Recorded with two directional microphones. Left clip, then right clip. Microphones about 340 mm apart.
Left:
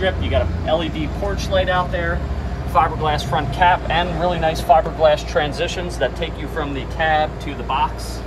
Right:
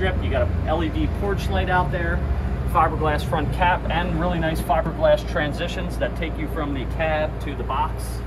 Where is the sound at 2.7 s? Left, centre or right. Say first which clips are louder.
Left 3 dB; left.